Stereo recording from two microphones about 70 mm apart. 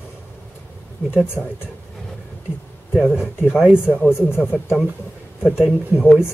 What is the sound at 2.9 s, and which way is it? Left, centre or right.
Speech, centre.